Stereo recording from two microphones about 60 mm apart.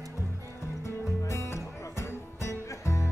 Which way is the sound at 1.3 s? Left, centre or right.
Left.